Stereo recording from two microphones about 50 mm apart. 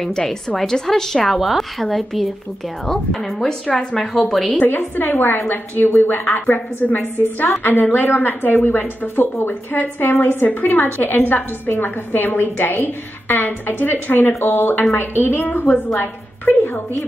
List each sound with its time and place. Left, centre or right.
0.0 s a woman's voice: centre
3.3 s a woman's voice: centre
4.1 s a woman's voice: centre
4.6 s a woman's voice: left